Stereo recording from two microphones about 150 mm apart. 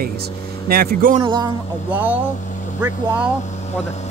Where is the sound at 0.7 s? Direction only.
90° right.